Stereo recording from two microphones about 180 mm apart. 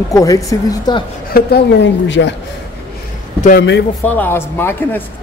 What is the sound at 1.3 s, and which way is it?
A woman's voice, 70° left (ahead or behind).